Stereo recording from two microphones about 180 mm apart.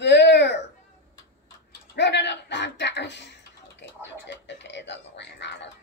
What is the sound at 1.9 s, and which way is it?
A child's voice, 75° left (ahead or behind).